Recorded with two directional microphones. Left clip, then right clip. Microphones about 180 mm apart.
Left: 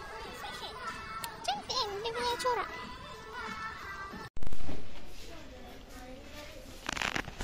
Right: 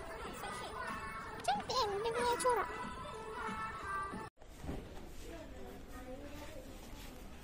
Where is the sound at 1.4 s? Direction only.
10° right (ahead or behind).